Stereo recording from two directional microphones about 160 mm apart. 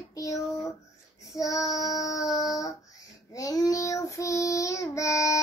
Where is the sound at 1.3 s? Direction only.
20° left (ahead or behind).